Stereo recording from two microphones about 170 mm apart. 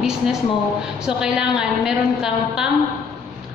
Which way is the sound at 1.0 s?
5° right (ahead or behind).